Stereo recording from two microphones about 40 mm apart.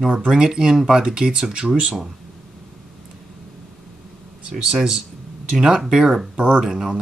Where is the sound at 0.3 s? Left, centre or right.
Centre.